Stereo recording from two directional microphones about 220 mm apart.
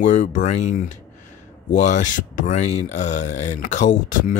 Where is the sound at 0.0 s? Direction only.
35° left (ahead or behind).